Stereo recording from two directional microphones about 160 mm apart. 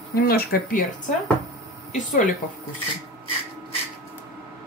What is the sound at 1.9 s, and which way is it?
Speech, 55° left (ahead or behind).